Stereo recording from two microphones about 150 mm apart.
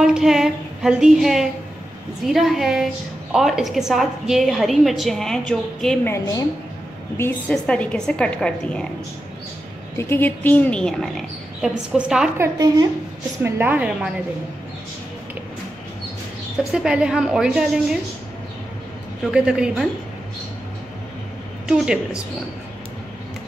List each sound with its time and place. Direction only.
0.0 s a woman's voice: 5° right (ahead or behind)
6.0 s a woman's voice: 20° left (ahead or behind)
7.2 s a woman's voice: 10° left (ahead or behind)
9.9 s a woman's voice: 15° left (ahead or behind); by 12.3 s 5° right (ahead or behind)
12.4 s a woman's voice: 25° right (ahead or behind)
13.4 s a woman's voice: 10° right (ahead or behind)
16.7 s a woman's voice: 5° right (ahead or behind)
19.3 s a woman's voice: 5° right (ahead or behind)
21.6 s a woman's voice: 5° right (ahead or behind)